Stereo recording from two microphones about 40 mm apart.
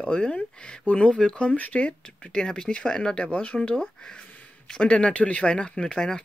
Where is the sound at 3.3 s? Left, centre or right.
Left.